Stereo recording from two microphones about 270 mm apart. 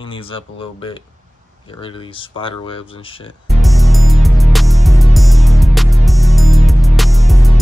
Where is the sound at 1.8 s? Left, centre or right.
Centre.